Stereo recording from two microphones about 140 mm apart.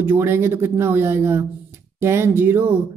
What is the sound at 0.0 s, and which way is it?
Speech, 15° right (ahead or behind).